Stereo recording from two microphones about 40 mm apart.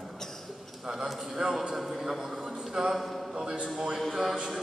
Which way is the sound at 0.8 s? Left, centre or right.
Centre.